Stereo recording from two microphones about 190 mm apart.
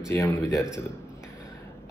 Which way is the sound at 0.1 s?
15° left (ahead or behind).